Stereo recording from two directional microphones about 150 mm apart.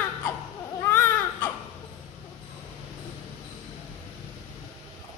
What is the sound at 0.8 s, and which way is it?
Baby cry, 15° left (ahead or behind).